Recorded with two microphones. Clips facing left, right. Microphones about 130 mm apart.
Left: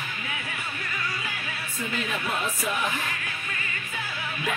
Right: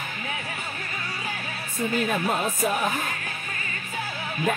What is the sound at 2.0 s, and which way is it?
Music, 50° right (ahead or behind).